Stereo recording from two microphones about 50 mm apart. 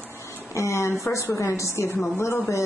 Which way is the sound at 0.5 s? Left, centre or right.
Left.